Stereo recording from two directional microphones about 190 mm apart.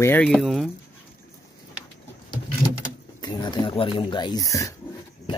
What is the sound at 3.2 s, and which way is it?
Speech, 20° left (ahead or behind).